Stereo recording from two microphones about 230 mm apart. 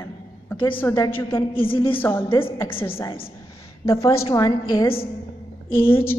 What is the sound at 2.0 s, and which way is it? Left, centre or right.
Speech, centre.